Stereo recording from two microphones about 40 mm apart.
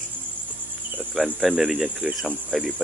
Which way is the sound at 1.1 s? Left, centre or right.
Centre.